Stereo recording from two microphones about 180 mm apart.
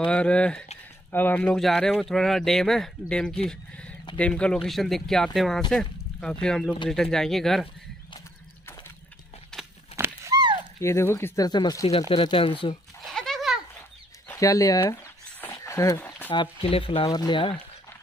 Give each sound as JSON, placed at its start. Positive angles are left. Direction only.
{"t": 0.0, "sound": "speech", "side_deg": 5}
{"t": 9.5, "sound": "crumpling", "side_deg": 5}
{"t": 9.9, "sound": "a sound", "side_deg": -15}
{"t": 10.8, "sound": "speech", "side_deg": 15}
{"t": 13.1, "sound": "goat", "side_deg": 0}
{"t": 14.2, "sound": "speech", "side_deg": 15}
{"t": 15.4, "sound": "a sound", "side_deg": 15}
{"t": 16.3, "sound": "speech", "side_deg": 30}